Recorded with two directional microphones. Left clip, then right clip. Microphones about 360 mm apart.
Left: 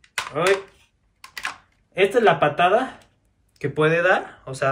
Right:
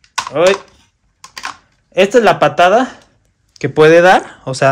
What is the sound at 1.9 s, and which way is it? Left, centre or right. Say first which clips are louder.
Speech: right 8 dB; centre.